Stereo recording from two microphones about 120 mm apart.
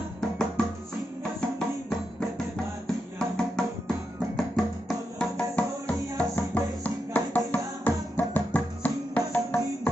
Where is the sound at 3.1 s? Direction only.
5° left (ahead or behind).